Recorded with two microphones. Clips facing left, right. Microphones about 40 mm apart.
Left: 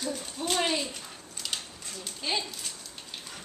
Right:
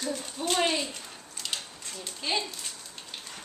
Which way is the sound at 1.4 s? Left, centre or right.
Centre.